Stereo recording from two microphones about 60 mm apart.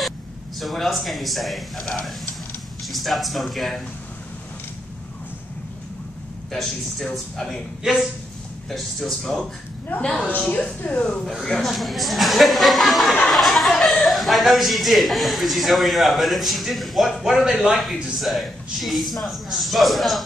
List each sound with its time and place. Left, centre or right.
0.6 s a man's voice: centre
6.5 s a man's voice: centre
7.8 s speech: centre
8.6 s a man's voice: centre
10.2 s speech: left
11.4 s a man's voice: centre